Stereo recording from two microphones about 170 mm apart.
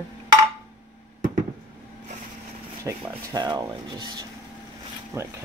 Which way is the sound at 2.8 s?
25° right (ahead or behind).